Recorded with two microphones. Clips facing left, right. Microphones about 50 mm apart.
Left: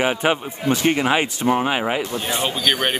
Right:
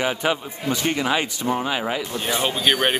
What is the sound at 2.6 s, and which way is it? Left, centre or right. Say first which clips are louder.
Speech: right 1 dB; centre.